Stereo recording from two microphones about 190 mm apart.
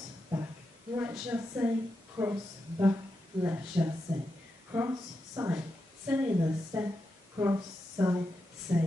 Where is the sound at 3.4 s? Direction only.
15° right (ahead or behind).